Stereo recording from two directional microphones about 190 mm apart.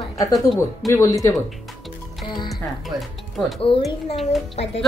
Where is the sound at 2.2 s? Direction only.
25° left (ahead or behind).